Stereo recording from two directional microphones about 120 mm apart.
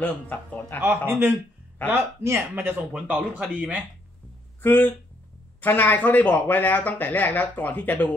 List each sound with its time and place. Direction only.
0.0 s speech: 15° left (ahead or behind)
0.7 s speech: 20° right (ahead or behind)
4.6 s speech: 15° left (ahead or behind)